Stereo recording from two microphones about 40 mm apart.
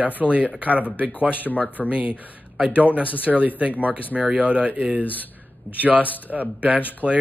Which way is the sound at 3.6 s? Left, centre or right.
Right.